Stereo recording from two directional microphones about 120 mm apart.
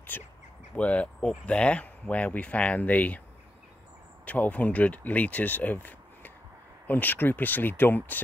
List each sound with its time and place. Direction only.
0.1 s speech: 15° left (ahead or behind)
4.3 s speech: 10° left (ahead or behind)